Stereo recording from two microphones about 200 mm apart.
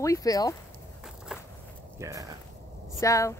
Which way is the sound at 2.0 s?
15° right (ahead or behind).